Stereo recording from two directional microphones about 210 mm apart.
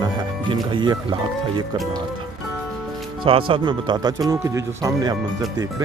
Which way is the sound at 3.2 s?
25° right (ahead or behind).